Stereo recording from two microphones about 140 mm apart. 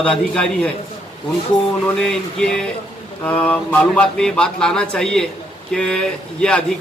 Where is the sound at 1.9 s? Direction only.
5° left (ahead or behind).